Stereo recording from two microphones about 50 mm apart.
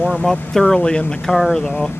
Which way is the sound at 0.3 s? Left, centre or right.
Centre.